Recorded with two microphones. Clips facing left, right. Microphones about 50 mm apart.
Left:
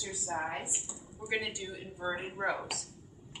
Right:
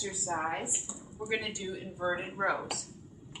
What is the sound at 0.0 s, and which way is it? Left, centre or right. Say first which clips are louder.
A woman's voice: right 2 dB; centre.